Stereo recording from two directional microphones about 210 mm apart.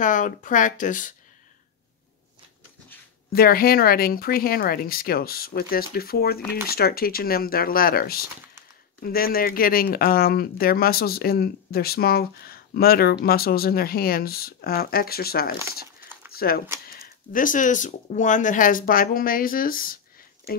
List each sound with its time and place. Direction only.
0.0 s speech: 40° left (ahead or behind)
3.3 s speech: 45° left (ahead or behind)